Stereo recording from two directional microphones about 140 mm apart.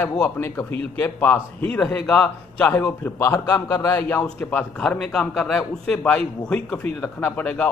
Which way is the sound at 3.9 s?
10° left (ahead or behind).